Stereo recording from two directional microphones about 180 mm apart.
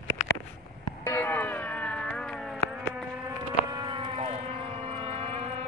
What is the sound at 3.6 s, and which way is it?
Civil defense siren, 25° right (ahead or behind).